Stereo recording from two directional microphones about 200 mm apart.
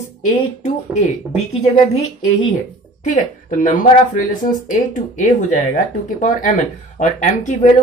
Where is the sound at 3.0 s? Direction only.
40° left (ahead or behind).